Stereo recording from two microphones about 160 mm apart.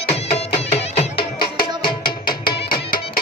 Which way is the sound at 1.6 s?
70° left (ahead or behind).